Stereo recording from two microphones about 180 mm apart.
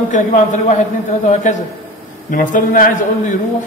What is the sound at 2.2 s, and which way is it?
A man's voice, 50° left (ahead or behind).